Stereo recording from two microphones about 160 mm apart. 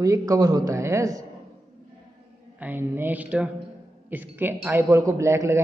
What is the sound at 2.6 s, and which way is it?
A man's voice, 15° right (ahead or behind).